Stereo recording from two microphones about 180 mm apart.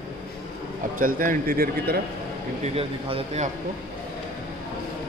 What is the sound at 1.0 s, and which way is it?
A man's voice, 50° right (ahead or behind).